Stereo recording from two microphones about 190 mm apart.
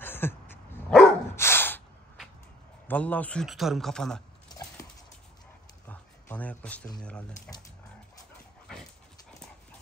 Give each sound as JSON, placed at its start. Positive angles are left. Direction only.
{"t": 0.0, "sound": "dog", "side_deg": 10}
{"t": 2.9, "sound": "a man's voice", "side_deg": 10}
{"t": 5.9, "sound": "a sound", "side_deg": 10}
{"t": 7.0, "sound": "a man's voice", "side_deg": 5}